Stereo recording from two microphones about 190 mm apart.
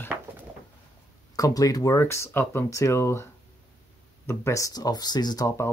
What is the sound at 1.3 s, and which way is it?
Speech, 20° left (ahead or behind).